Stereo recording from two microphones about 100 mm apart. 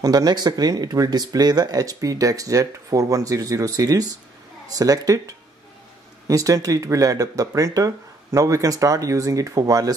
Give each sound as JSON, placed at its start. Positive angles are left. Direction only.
{"t": 0.0, "sound": "speech", "side_deg": -40}